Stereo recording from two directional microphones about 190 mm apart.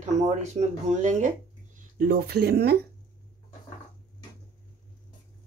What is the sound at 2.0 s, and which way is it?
Speech, 55° right (ahead or behind).